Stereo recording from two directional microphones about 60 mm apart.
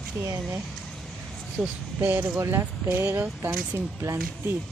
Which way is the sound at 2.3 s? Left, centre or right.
Right.